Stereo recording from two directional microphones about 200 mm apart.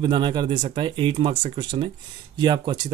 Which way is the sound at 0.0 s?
20° right (ahead or behind).